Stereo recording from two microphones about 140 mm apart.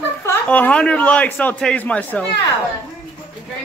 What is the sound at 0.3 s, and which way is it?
Speech, 10° left (ahead or behind).